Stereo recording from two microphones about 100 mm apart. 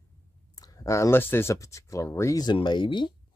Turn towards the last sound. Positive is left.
turn(degrees=50)  # may be behind; listen again after turning